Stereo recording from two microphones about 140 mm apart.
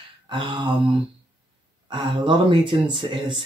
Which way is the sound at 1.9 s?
35° right (ahead or behind).